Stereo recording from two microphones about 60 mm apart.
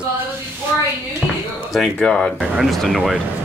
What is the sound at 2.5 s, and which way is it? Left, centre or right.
Speech, centre.